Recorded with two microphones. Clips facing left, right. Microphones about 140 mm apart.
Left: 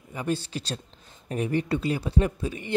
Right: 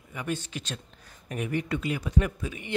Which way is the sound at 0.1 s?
30° left (ahead or behind).